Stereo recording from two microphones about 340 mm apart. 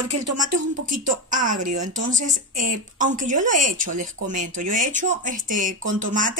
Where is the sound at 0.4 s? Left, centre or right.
Right.